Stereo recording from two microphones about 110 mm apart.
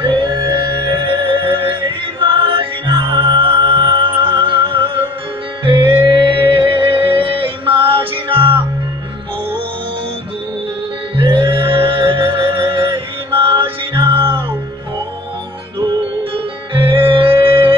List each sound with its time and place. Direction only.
0.0 s music: 45° right (ahead or behind)
11.1 s music: 45° right (ahead or behind)
16.7 s music: 50° right (ahead or behind)